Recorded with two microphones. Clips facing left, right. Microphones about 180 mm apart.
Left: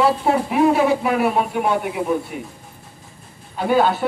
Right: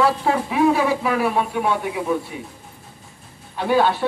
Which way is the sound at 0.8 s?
25° left (ahead or behind).